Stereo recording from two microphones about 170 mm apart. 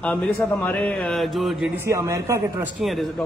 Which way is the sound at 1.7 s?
15° right (ahead or behind).